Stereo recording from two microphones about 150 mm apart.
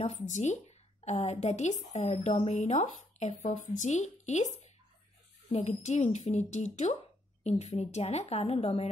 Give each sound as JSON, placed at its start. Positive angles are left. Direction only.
{"t": 0.0, "sound": "speech", "side_deg": 50}